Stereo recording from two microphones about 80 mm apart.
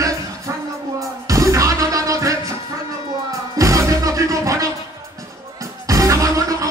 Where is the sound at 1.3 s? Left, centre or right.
Right.